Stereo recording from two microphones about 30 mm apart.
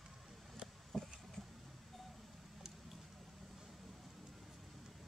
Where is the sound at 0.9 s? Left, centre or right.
Centre.